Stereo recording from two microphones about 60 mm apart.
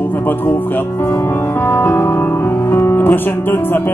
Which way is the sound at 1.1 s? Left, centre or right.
Left.